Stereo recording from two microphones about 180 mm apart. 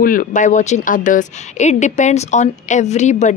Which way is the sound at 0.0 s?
50° left (ahead or behind).